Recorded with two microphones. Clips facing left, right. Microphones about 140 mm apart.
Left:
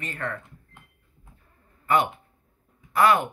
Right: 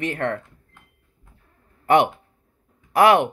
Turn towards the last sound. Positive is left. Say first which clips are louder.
# right 5 dB
turn(degrees=-75)  # may be behind; listen again after turning